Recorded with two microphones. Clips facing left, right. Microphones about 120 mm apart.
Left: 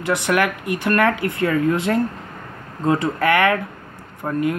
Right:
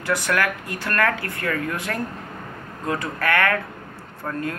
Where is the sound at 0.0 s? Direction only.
20° left (ahead or behind).